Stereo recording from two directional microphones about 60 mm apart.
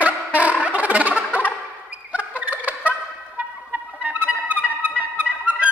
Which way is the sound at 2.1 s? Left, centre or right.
Right.